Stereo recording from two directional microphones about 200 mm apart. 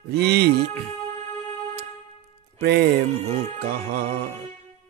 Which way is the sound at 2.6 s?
60° right (ahead or behind).